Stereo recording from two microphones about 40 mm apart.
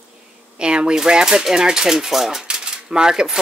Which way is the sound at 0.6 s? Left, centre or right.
Right.